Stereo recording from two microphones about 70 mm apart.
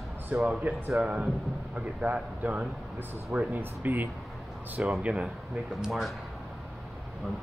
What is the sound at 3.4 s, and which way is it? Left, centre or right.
Speech, right.